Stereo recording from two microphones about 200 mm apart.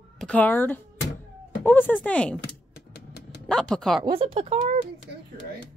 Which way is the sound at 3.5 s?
5° left (ahead or behind).